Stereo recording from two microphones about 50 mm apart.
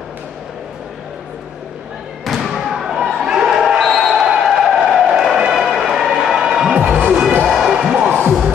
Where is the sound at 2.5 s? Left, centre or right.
Centre.